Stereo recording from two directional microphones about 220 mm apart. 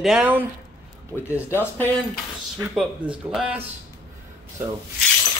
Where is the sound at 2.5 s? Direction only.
5° right (ahead or behind).